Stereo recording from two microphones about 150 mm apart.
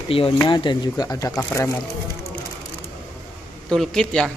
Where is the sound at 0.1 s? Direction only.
40° left (ahead or behind).